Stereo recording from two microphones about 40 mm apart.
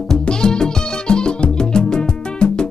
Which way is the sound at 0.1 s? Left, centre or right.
Centre.